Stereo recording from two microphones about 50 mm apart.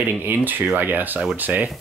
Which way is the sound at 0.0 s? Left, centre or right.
Right.